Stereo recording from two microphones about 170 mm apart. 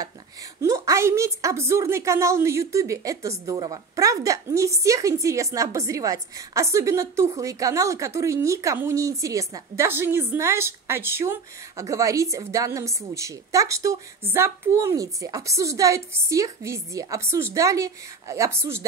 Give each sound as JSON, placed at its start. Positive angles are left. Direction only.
{"t": 0.6, "sound": "a woman's voice", "side_deg": -20}